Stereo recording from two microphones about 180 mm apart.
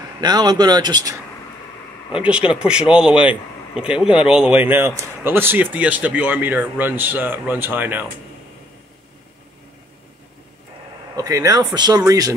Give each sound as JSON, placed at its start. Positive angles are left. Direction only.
{"t": 0.2, "sound": "speech", "side_deg": -25}
{"t": 2.1, "sound": "a man's voice", "side_deg": -5}
{"t": 11.1, "sound": "speech", "side_deg": -20}